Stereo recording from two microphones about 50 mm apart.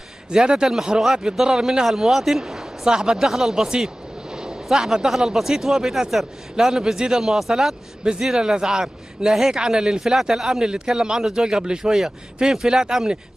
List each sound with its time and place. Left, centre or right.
0.3 s a man's voice: centre
8.0 s a man's voice: centre